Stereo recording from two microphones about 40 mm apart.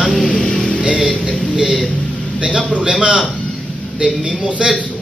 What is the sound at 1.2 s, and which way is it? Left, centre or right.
Speech, centre.